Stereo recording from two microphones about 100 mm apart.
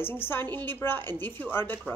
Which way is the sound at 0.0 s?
20° left (ahead or behind).